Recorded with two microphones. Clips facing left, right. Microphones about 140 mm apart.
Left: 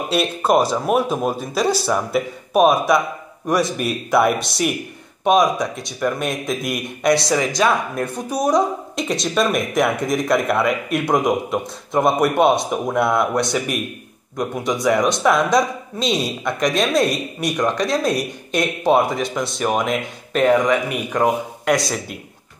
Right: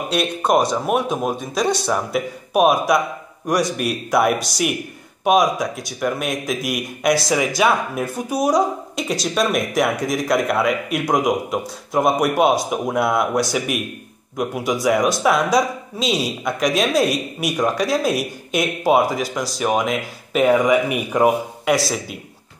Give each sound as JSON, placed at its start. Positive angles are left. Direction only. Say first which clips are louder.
{"t": 0.1, "sound": "speech", "louder": "left 1 dB", "side_deg": 0}